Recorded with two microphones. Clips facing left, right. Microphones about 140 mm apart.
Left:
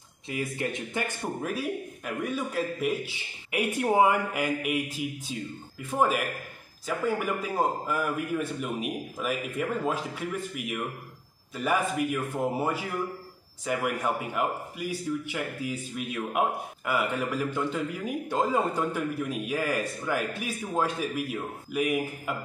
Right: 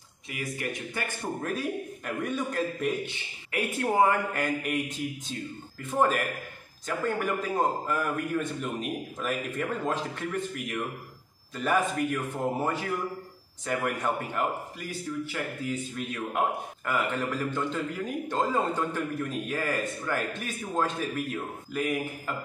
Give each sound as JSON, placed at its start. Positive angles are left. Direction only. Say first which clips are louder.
{"t": 0.3, "sound": "a man's voice", "louder": "left 3 dB", "side_deg": 25}
{"t": 1.4, "sound": "a man's voice", "louder": "even", "side_deg": 5}
{"t": 3.5, "sound": "a man's voice", "louder": "left 2 dB", "side_deg": 15}